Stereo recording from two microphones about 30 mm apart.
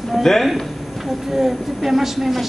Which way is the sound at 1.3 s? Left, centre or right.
Centre.